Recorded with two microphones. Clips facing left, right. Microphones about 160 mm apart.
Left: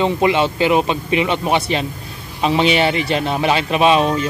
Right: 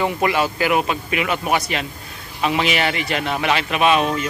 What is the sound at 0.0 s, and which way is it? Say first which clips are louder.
A man's voice: left 4 dB; 20° left (ahead or behind).